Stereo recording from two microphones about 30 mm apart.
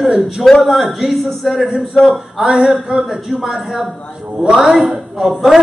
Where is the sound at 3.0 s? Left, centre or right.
Centre.